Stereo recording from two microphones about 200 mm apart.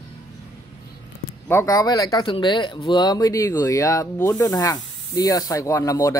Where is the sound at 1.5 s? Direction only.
15° left (ahead or behind).